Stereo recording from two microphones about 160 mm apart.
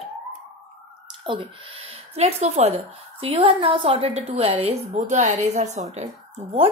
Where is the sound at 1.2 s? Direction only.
35° right (ahead or behind).